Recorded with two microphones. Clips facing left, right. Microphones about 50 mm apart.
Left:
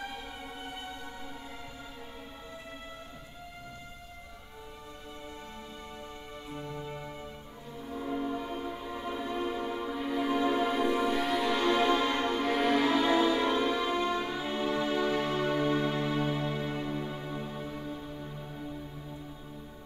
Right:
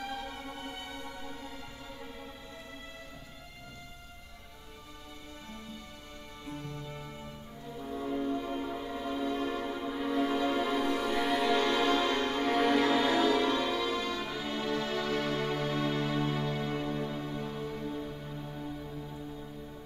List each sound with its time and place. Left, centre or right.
6.5 s music: centre
7.8 s music: centre
8.9 s music: centre
9.7 s music: centre
11.1 s music: centre
11.5 s music: centre
12.4 s music: centre
13.0 s music: left